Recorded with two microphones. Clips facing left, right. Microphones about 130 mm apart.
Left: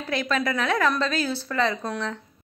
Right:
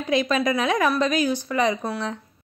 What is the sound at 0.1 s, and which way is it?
A woman's voice, 20° right (ahead or behind).